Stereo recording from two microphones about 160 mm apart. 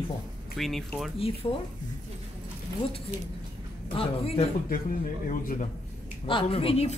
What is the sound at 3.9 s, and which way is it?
Speech, 35° left (ahead or behind).